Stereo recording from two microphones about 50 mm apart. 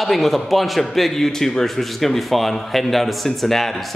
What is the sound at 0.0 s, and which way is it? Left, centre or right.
A man's voice, centre.